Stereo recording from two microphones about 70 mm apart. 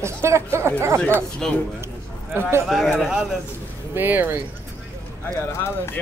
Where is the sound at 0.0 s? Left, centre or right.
Right.